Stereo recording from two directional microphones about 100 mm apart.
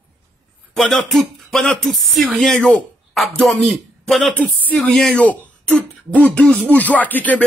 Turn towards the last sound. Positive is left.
turn(degrees=15)  # may be behind; listen again after turning